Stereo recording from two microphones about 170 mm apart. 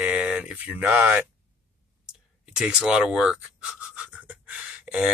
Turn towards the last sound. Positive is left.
turn(degrees=-5)  # may be behind; listen again after turning